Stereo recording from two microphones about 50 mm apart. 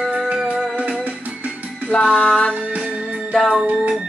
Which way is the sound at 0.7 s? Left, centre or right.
Right.